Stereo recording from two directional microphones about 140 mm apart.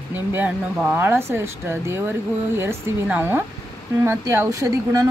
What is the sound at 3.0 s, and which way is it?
Speech, 15° right (ahead or behind).